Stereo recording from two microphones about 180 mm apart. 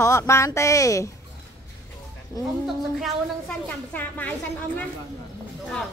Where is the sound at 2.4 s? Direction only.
20° left (ahead or behind).